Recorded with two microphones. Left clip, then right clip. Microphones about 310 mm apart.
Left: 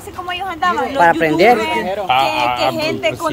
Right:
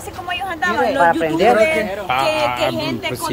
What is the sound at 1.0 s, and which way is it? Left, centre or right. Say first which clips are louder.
Speech: left 5 dB; left.